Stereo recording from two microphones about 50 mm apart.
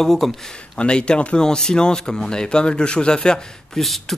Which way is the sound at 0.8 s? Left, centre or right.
Centre.